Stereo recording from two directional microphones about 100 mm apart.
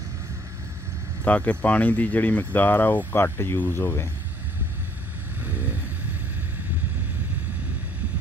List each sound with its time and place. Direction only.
1.2 s speech: 15° left (ahead or behind)